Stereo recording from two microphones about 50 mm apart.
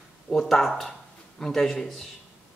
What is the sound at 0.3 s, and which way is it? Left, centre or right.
A man's voice, centre.